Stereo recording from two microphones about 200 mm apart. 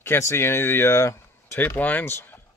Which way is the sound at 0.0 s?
15° left (ahead or behind).